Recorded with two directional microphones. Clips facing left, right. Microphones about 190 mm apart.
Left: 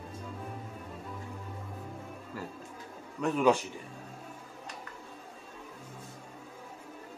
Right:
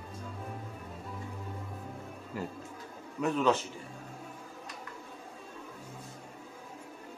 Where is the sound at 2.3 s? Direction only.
20° right (ahead or behind).